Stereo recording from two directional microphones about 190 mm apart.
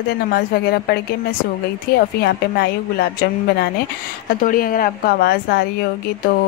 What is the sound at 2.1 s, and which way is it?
Speech, 55° left (ahead or behind).